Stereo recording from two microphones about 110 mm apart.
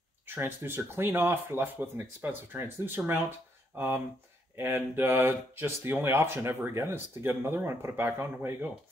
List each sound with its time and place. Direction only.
0.3 s speech: 20° right (ahead or behind)